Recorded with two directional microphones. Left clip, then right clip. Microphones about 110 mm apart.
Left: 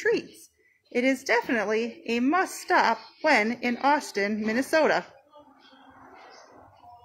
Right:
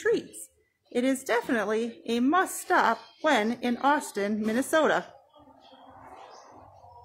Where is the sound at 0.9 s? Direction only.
15° left (ahead or behind).